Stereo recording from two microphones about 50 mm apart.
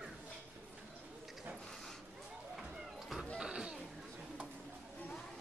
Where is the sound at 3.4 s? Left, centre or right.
Centre.